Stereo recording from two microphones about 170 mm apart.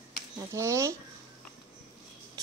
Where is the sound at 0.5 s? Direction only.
15° right (ahead or behind).